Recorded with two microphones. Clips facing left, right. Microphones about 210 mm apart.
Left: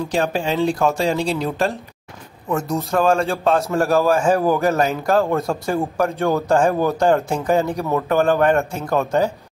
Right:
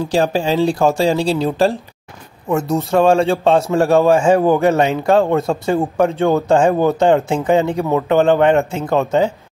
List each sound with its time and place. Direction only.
0.0 s speech: 30° right (ahead or behind)